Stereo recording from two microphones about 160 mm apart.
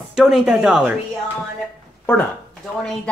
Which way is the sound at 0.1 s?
5° right (ahead or behind).